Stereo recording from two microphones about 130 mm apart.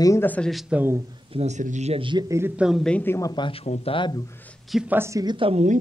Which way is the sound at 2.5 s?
5° right (ahead or behind).